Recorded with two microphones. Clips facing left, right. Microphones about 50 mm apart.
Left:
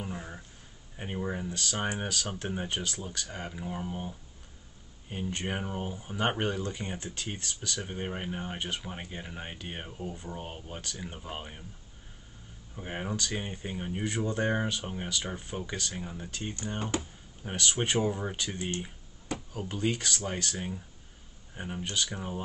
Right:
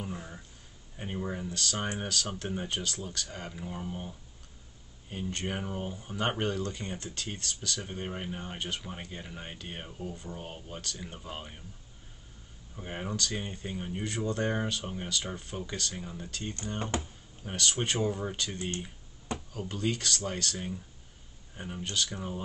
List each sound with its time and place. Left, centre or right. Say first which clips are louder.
0.0 s a sound: left 1 dB; centre
0.9 s speech: left 1 dB; centre
5.1 s speech: left 1 dB; centre
12.7 s speech: left 1 dB; centre